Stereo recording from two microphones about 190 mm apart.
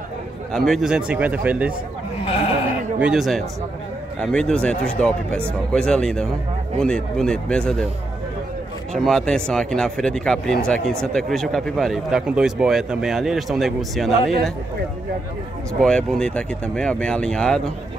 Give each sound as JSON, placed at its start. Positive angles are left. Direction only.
{"t": 0.5, "sound": "speech", "side_deg": 0}
{"t": 2.2, "sound": "speech", "side_deg": 30}
{"t": 3.0, "sound": "speech", "side_deg": -5}
{"t": 8.9, "sound": "speech", "side_deg": 0}
{"t": 15.8, "sound": "speech", "side_deg": 5}